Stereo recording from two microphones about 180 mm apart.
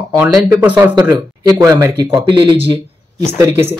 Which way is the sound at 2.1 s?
25° right (ahead or behind).